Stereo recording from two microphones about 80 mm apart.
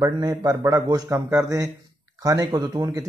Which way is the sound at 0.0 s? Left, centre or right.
Right.